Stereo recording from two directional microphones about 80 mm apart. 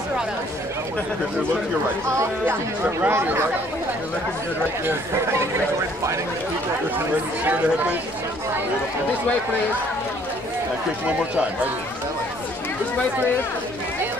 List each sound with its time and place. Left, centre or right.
3.0 s speech: right
4.8 s speech: right
7.4 s speech: centre